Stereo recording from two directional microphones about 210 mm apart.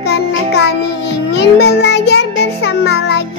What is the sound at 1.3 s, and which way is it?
Music, 50° left (ahead or behind).